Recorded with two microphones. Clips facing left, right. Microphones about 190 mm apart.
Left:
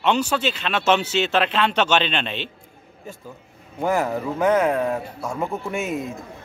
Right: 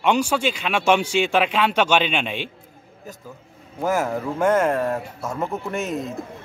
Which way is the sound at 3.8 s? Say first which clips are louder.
Even; 5° right (ahead or behind).